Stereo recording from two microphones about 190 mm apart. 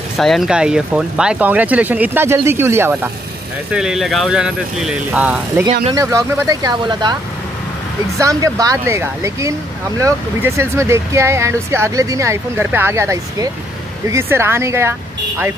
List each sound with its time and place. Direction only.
0.2 s speech: centre (ahead or behind); by 7.2 s 20° right (ahead or behind)
8.2 s speech: 20° right (ahead or behind)